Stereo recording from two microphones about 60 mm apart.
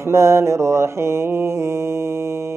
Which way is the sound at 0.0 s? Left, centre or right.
Right.